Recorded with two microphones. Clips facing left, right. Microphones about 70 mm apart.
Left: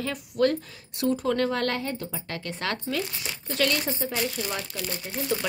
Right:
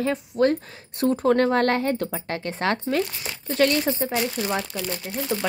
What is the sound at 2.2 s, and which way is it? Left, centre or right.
Speech, right.